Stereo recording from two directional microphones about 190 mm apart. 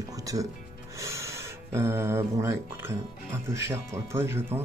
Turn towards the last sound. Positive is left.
turn(degrees=-15)  # may be behind; listen again after turning